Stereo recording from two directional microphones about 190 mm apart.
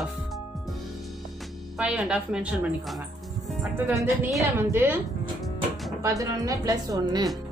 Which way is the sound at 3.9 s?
15° right (ahead or behind).